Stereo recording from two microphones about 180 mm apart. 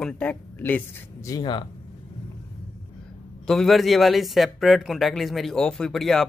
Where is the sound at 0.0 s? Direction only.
5° left (ahead or behind).